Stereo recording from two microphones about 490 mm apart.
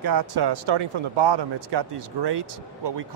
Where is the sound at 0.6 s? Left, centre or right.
Right.